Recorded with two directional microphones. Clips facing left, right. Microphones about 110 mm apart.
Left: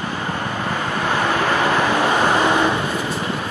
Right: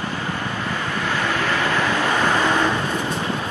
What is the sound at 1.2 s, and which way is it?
Vehicle, 20° left (ahead or behind).